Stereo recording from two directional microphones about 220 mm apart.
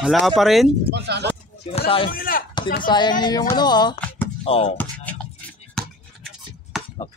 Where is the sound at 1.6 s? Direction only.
25° left (ahead or behind).